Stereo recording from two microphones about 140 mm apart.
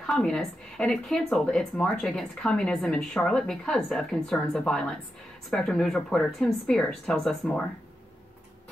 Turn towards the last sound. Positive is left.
turn(degrees=5)  # may be behind; listen again after turning